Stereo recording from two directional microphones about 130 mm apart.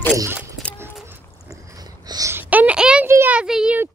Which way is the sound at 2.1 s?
30° right (ahead or behind).